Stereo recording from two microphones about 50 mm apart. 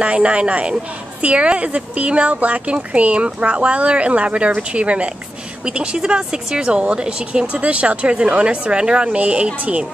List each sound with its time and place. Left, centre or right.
0.0 s speech: right